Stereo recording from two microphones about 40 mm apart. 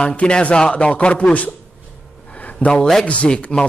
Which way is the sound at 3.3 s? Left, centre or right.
Left.